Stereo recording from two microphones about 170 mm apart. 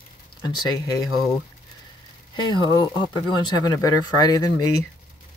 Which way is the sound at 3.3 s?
20° left (ahead or behind).